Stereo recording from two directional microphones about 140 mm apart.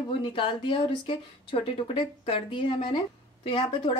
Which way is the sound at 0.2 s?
35° left (ahead or behind).